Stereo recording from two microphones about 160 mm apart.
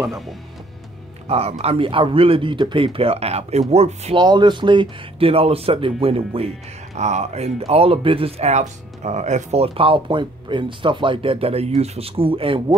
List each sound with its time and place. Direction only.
1.2 s speech: 40° right (ahead or behind)
4.2 s speech: 30° right (ahead or behind)